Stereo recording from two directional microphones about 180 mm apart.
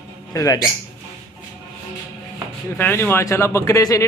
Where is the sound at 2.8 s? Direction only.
10° left (ahead or behind).